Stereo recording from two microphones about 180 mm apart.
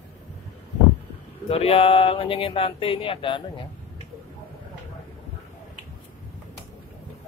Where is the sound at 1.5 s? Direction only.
35° left (ahead or behind).